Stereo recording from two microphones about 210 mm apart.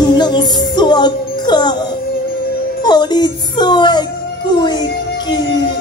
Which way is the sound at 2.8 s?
20° left (ahead or behind).